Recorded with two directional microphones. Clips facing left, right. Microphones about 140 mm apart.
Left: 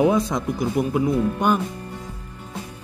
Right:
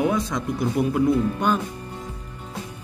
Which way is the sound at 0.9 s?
10° left (ahead or behind).